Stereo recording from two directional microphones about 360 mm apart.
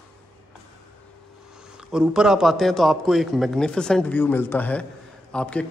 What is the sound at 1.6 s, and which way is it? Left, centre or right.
A man's voice, centre.